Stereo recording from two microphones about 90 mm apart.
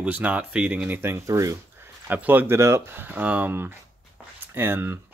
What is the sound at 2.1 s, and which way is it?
Speech, 20° right (ahead or behind).